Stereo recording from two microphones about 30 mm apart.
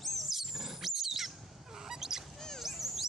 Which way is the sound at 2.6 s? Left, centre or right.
Centre.